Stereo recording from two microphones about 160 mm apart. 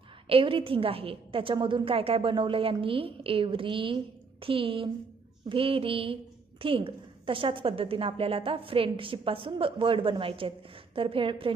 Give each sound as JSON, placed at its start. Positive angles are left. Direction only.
{"t": 0.3, "sound": "a woman's voice", "side_deg": -35}